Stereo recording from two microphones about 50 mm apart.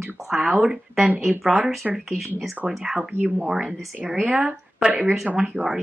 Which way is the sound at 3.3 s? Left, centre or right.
Centre.